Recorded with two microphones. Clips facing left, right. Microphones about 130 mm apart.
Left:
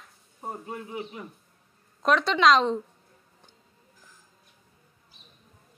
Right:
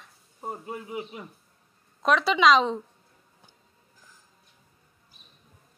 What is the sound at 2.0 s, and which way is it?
Speech, centre (ahead or behind).